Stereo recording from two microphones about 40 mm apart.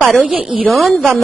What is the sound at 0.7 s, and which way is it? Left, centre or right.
Speech, centre.